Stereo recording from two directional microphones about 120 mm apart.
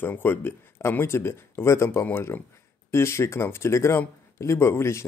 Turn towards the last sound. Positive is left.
turn(degrees=20)  # may be behind; listen again after turning